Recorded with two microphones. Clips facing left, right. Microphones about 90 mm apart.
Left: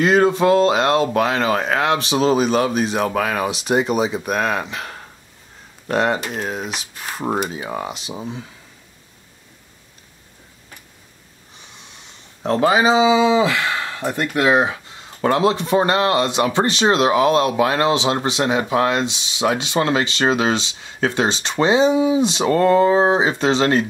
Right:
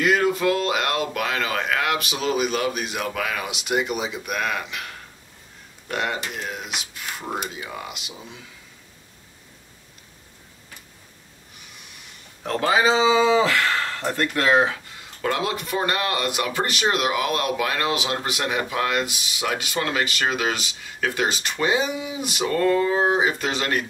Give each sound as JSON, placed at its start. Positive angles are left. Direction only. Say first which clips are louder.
{"t": 0.0, "sound": "speech", "louder": "left 5 dB", "side_deg": 30}
{"t": 12.4, "sound": "speech", "louder": "left 4 dB", "side_deg": 20}